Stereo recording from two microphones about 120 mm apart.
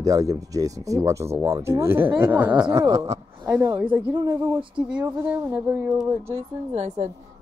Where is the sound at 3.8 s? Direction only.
15° right (ahead or behind).